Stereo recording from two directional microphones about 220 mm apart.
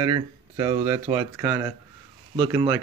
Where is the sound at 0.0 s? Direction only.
20° right (ahead or behind).